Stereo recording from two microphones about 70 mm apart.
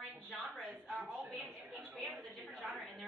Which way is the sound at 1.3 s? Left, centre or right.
Centre.